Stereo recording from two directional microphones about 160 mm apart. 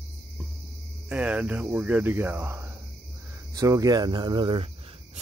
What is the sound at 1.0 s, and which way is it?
Speech, 10° right (ahead or behind).